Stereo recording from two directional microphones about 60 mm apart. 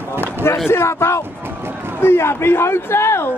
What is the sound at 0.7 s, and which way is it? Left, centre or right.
A man's voice, left.